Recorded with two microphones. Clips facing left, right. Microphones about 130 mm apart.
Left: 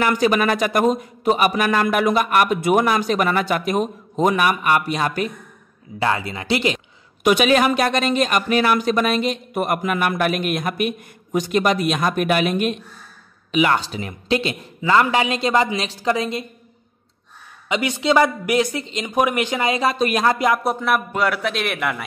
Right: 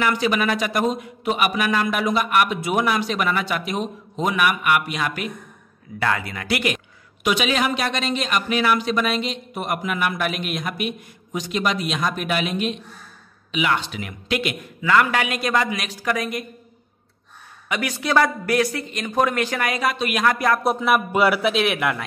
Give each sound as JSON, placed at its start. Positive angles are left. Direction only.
{"t": 0.0, "sound": "speech", "side_deg": 45}
{"t": 5.9, "sound": "a man's voice", "side_deg": 25}
{"t": 7.2, "sound": "a man's voice", "side_deg": 50}
{"t": 17.6, "sound": "a man's voice", "side_deg": 20}
{"t": 20.3, "sound": "a man's voice", "side_deg": 20}
{"t": 20.6, "sound": "a man's voice", "side_deg": -5}